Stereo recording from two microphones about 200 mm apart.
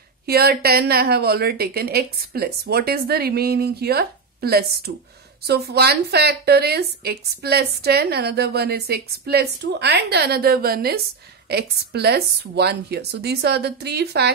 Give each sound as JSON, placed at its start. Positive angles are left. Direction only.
{"t": 0.3, "sound": "a woman's voice", "side_deg": -50}